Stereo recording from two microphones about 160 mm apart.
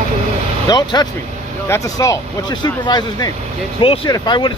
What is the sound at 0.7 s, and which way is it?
Speech, 25° left (ahead or behind).